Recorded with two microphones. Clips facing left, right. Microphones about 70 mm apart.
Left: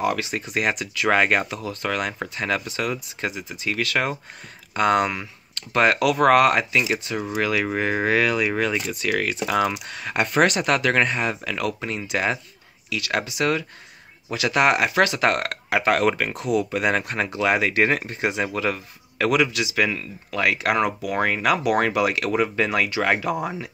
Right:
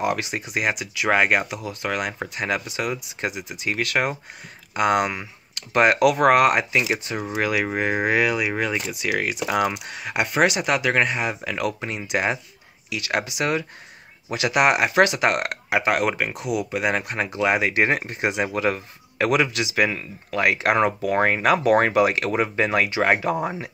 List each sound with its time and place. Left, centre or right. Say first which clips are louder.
0.0 s speech: even; right
0.5 s speech: left 1 dB; centre
4.7 s speech: left 1 dB; centre